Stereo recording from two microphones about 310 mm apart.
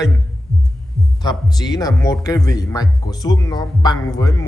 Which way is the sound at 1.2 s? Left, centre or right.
Centre.